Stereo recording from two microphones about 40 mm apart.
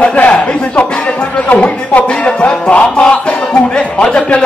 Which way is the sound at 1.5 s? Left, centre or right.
Left.